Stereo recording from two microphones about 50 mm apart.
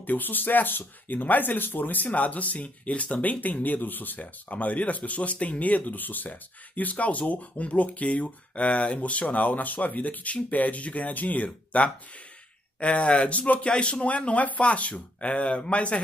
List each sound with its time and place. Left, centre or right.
0.0 s speech: left